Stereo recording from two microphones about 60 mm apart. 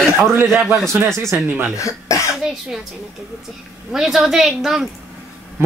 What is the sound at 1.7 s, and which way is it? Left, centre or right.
Speech, left.